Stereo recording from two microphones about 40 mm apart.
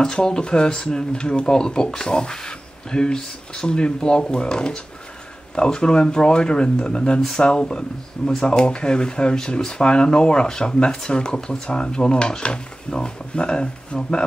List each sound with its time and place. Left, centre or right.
0.0 s speech: centre
7.2 s speech: centre